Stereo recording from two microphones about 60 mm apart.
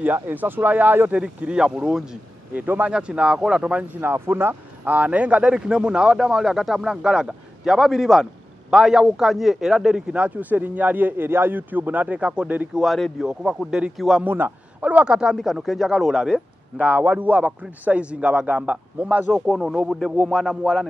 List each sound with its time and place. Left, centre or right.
0.0 s speech: right
1.1 s speech: centre
2.6 s speech: right
2.9 s speech: centre
4.0 s speech: right
4.8 s speech: right
10.1 s a man's voice: right
12.8 s speech: centre
13.9 s speech: centre
14.2 s a man's voice: right; by 15.3 s centre
15.4 s speech: centre
16.8 s a man's voice: right
19.3 s speech: centre